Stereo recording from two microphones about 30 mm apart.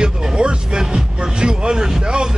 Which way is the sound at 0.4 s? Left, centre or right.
Right.